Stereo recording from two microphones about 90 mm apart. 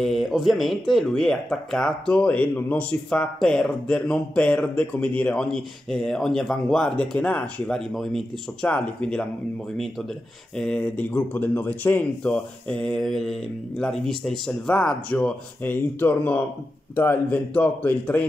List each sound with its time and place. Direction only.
0.0 s speech: centre (ahead or behind)
7.9 s speech: centre (ahead or behind)
8.6 s speech: 10° left (ahead or behind)
10.6 s a man's voice: 10° left (ahead or behind)